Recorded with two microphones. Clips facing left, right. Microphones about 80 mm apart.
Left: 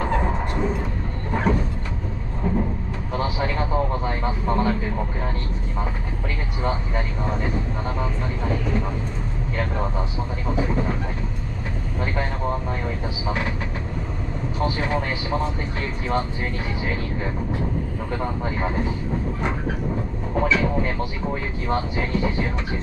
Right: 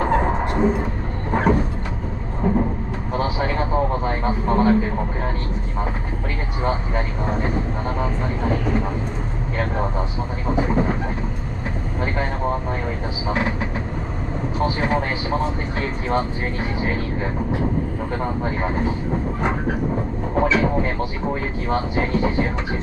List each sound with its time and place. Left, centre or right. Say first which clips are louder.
0.0 s vehicle: right 4 dB; right
7.2 s speech: right 3 dB; right
10.5 s speech: right 4 dB; right
14.8 s speech: right 3 dB; right
16.8 s speech: right 3 dB; right
18.1 s speech: right 1 dB; right
20.3 s speech: right 2 dB; right